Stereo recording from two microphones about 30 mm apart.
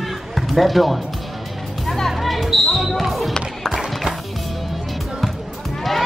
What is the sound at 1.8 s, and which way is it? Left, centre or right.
Music, centre.